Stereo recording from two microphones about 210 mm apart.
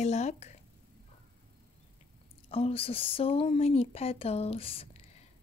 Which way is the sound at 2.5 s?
25° left (ahead or behind).